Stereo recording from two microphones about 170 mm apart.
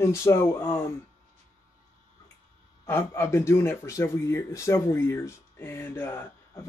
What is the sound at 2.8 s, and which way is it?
Speech, 15° left (ahead or behind).